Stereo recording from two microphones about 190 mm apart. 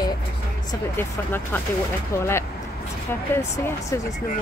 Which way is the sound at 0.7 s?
10° left (ahead or behind).